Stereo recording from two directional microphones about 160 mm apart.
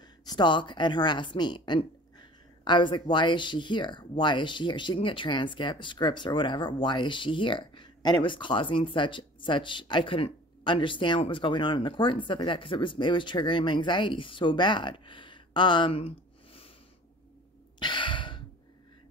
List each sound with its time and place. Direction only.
0.0 s speech: 25° left (ahead or behind)
17.7 s sigh: 30° left (ahead or behind)